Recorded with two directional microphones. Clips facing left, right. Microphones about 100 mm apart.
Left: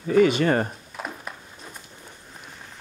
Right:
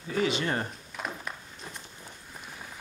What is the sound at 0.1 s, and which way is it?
Speech, 55° left (ahead or behind).